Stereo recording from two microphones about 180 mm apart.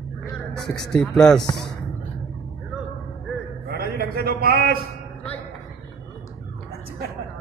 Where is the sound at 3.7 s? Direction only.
60° right (ahead or behind).